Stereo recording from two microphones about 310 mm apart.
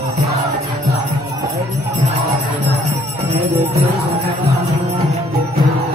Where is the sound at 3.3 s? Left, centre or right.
Centre.